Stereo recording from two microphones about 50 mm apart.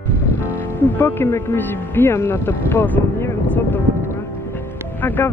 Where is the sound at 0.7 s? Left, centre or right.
Left.